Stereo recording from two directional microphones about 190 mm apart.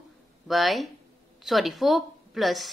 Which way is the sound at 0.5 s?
Centre (ahead or behind).